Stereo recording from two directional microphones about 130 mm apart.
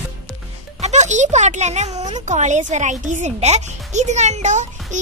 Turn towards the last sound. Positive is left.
turn(degrees=-70)  # may be behind; listen again after turning